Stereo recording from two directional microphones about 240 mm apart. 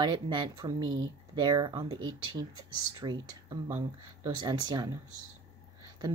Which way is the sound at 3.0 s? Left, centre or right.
Centre.